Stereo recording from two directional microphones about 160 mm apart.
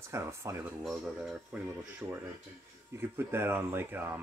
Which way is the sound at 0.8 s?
Centre (ahead or behind).